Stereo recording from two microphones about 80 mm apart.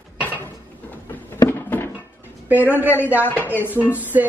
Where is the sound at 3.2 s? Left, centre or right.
Left.